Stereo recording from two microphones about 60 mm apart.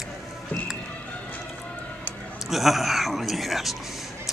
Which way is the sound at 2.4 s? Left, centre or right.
Centre.